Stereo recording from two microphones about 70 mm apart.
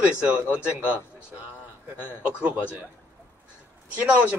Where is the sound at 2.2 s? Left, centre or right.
Right.